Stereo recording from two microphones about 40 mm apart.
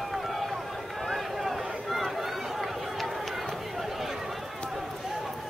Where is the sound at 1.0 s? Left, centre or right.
Centre.